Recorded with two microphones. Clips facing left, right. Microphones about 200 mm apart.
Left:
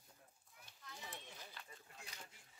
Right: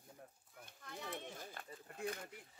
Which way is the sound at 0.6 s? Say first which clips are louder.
Right 7 dB; 55° right (ahead or behind).